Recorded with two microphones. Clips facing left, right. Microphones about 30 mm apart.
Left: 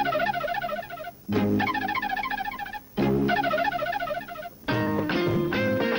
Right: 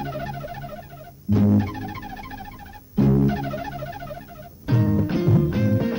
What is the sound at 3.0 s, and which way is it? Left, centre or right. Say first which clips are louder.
Music: right 3 dB; left.